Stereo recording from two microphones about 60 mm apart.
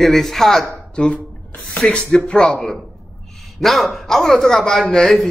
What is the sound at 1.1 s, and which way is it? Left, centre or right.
Speech, left.